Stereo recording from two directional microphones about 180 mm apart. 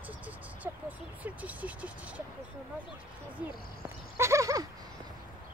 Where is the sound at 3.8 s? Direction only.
15° right (ahead or behind).